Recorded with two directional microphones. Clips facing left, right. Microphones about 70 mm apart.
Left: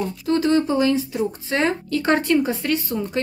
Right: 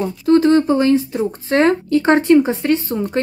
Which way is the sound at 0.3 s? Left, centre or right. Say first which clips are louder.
Right 7 dB; right.